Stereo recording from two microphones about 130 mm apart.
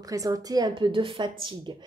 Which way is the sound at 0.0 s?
25° right (ahead or behind).